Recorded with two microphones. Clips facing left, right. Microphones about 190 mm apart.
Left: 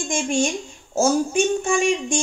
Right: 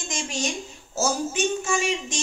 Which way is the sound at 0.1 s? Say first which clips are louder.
Left 8 dB; 55° left (ahead or behind).